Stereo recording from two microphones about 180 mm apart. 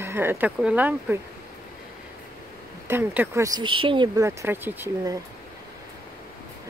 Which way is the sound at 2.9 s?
15° right (ahead or behind).